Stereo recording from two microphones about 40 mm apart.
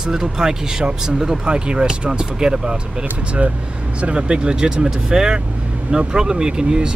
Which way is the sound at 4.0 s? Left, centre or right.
Right.